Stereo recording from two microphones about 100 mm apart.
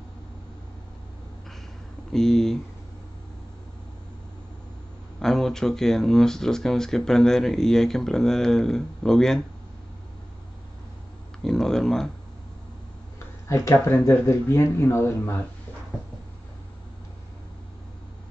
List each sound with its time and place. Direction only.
2.1 s speech: 5° left (ahead or behind)
5.2 s speech: 5° left (ahead or behind)
11.4 s speech: 5° left (ahead or behind)
13.5 s speech: 30° left (ahead or behind)